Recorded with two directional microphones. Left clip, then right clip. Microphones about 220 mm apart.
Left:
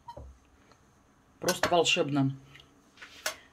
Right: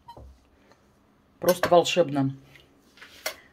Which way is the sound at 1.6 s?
15° right (ahead or behind).